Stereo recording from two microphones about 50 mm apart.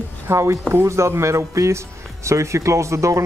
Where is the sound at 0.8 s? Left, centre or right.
Right.